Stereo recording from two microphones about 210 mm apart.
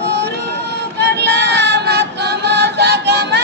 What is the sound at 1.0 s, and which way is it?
Music, 55° right (ahead or behind).